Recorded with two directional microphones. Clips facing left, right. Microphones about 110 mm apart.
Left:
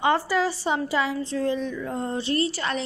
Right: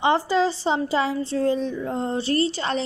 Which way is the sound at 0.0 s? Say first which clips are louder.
Right 2 dB; 25° right (ahead or behind).